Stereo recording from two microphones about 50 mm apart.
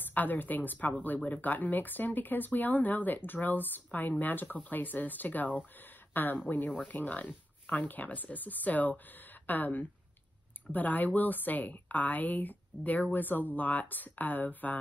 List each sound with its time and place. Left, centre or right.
0.1 s a woman's voice: left